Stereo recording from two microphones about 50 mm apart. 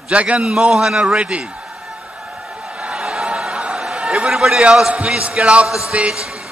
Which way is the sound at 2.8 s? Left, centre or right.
Centre.